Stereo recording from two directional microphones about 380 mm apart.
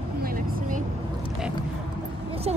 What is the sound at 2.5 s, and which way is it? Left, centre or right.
Speech, centre.